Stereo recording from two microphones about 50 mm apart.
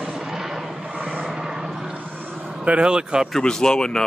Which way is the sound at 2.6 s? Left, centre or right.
Right.